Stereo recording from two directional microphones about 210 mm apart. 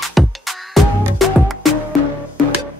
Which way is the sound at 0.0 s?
Centre (ahead or behind).